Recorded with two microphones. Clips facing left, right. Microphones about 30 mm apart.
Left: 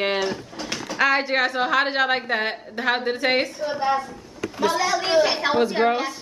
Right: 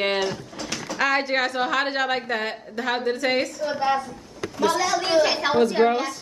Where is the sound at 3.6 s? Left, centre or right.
Centre.